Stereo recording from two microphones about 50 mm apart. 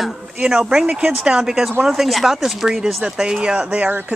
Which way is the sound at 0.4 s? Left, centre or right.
Centre.